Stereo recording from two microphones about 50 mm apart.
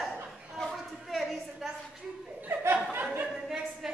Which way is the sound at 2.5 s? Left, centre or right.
Right.